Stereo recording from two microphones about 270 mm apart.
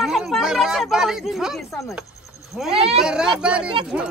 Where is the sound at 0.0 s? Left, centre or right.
Centre.